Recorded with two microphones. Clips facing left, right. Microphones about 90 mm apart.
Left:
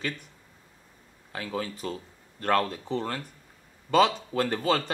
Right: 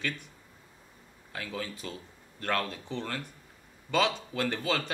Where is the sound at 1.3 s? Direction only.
40° left (ahead or behind).